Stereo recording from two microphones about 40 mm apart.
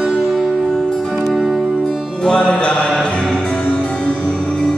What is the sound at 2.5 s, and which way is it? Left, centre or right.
Mantra, centre.